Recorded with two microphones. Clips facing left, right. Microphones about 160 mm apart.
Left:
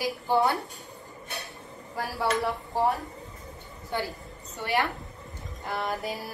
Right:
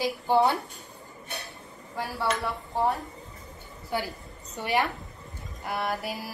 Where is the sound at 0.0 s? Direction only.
20° right (ahead or behind).